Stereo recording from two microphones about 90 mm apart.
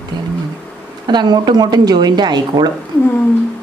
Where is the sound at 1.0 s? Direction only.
55° right (ahead or behind).